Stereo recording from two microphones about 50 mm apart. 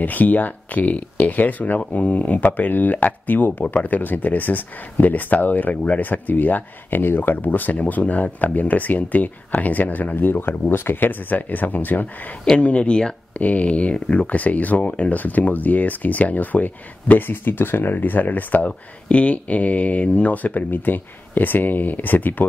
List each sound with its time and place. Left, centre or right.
0.0 s speech: left
12.5 s speech: left
13.4 s speech: left
18.7 s speech: left